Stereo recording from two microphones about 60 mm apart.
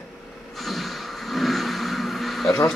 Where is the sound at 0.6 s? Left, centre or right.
Centre.